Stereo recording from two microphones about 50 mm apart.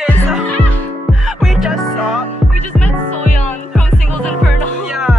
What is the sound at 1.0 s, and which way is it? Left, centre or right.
Music, centre.